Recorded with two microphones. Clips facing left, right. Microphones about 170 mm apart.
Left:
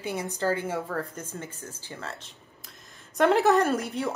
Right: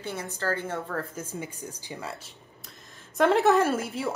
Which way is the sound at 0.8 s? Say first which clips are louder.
Left 1 dB; centre (ahead or behind).